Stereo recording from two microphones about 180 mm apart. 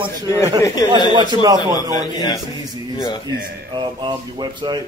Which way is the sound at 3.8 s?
25° right (ahead or behind).